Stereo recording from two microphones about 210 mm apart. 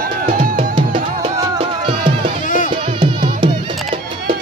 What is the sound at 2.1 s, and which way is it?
Music, 25° right (ahead or behind).